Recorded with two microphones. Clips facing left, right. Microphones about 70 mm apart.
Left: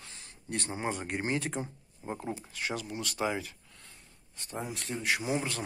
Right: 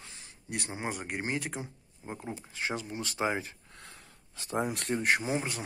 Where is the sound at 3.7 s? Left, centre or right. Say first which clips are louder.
Right 5 dB; right.